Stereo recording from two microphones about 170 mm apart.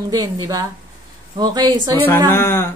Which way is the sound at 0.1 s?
20° right (ahead or behind).